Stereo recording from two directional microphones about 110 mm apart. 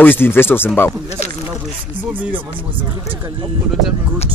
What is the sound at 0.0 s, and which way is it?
Speech, 20° left (ahead or behind).